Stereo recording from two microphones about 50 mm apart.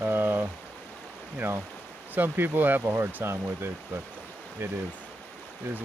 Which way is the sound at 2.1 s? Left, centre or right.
Right.